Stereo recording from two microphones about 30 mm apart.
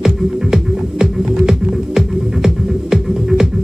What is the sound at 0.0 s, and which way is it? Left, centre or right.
Music, right.